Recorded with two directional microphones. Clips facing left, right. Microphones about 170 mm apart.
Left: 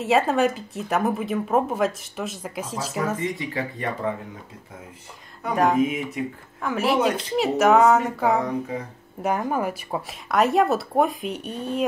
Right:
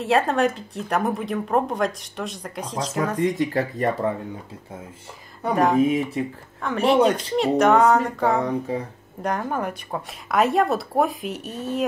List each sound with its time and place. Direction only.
0.0 s speech: centre (ahead or behind)
3.2 s speech: 45° right (ahead or behind)
5.5 s speech: centre (ahead or behind)
5.8 s speech: 35° right (ahead or behind)
6.6 s speech: 5° left (ahead or behind)